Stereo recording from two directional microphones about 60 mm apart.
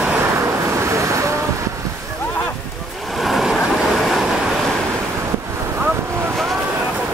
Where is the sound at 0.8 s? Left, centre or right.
Right.